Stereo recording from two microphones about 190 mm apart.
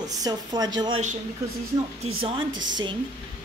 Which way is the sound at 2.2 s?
25° right (ahead or behind).